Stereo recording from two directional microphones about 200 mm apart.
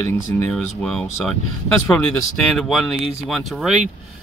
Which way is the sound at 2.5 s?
Centre (ahead or behind).